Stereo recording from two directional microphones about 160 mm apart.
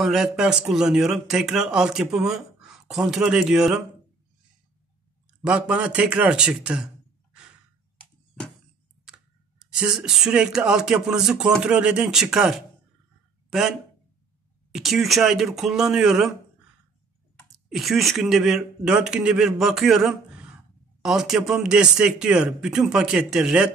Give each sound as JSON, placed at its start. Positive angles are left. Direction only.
{"t": 0.0, "sound": "speech", "side_deg": 0}
{"t": 5.4, "sound": "speech", "side_deg": -5}
{"t": 9.0, "sound": "speech", "side_deg": -5}
{"t": 17.6, "sound": "speech", "side_deg": 0}